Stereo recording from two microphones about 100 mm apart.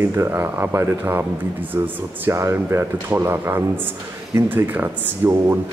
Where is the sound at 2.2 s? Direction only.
25° right (ahead or behind).